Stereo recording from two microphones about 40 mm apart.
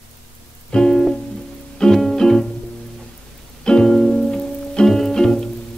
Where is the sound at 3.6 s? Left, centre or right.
Centre.